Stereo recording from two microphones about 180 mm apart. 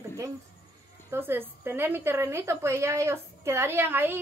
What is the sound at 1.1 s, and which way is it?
A woman's voice, 10° right (ahead or behind).